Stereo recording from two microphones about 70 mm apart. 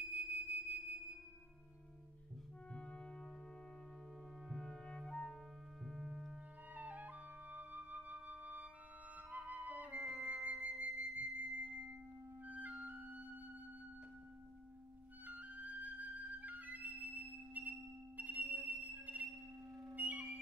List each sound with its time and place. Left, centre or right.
0.0 s music: right
2.7 s music: centre
4.5 s clarinet: centre
5.9 s music: centre
6.7 s flute: right
10.2 s music: centre
15.2 s music: right